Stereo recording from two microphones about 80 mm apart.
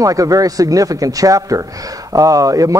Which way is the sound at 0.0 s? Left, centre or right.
Right.